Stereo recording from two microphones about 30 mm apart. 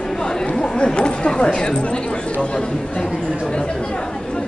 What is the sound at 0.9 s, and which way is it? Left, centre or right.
Speech, left.